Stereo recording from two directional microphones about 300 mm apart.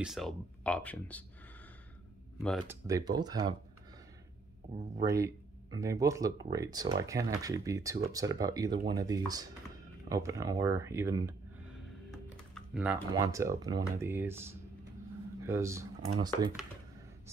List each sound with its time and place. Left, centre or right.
0.0 s speech: centre
2.4 s speech: centre
2.9 s speech: centre
5.0 s speech: centre